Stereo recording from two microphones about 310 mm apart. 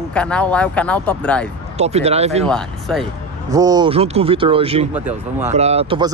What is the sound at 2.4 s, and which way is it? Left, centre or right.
Speech, centre.